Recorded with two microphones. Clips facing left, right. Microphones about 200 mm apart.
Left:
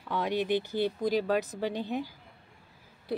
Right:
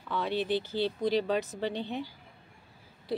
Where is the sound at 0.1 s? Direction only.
15° left (ahead or behind).